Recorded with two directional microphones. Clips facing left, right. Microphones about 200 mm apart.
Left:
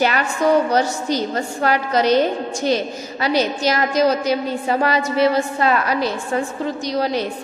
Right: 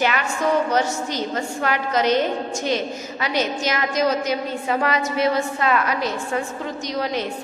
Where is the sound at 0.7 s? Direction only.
35° left (ahead or behind).